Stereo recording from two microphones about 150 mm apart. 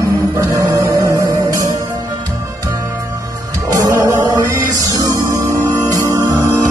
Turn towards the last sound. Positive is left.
turn(degrees=-20)  # may be behind; listen again after turning